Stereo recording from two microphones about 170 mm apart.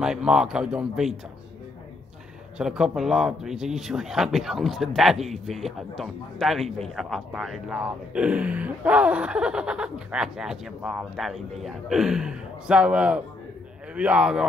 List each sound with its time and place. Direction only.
0.0 s speech: 5° right (ahead or behind)
2.6 s speech: 5° right (ahead or behind)